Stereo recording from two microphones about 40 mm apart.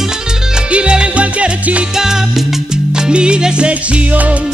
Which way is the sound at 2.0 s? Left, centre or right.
Centre.